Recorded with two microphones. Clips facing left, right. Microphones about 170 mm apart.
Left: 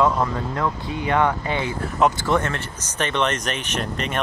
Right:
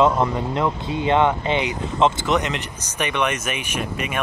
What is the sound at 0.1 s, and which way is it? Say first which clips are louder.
Speech: right 2 dB; 20° right (ahead or behind).